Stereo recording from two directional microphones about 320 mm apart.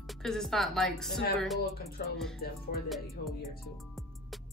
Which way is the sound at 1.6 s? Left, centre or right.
Left.